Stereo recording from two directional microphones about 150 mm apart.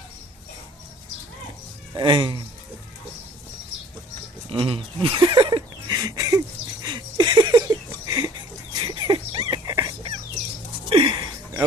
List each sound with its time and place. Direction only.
2.0 s speech: 35° right (ahead or behind)
4.5 s speech: 35° right (ahead or behind)
5.4 s a sound: 25° right (ahead or behind)